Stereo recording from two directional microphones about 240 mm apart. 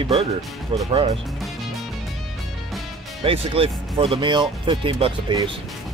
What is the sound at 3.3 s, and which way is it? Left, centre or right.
Speech, right.